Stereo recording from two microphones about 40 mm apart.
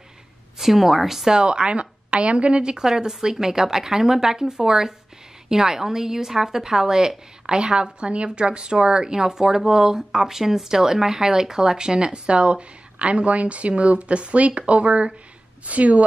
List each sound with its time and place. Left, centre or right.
0.6 s a woman's voice: centre
1.4 s a woman's voice: right